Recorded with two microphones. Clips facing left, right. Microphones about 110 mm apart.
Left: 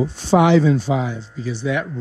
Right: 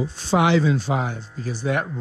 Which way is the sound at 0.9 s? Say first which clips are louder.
Left 3 dB; 50° right (ahead or behind).